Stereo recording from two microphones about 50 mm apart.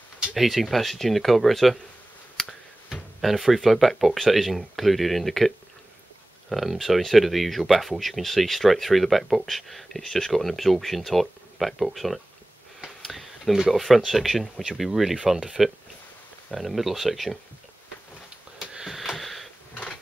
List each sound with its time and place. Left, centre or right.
0.4 s speech: centre
2.4 s a sound: centre
2.9 s speech: centre
6.5 s speech: centre
18.6 s sniff: centre
18.9 s a sound: centre